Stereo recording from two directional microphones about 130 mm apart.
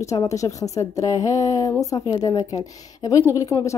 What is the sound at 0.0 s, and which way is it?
A woman's voice, 25° left (ahead or behind).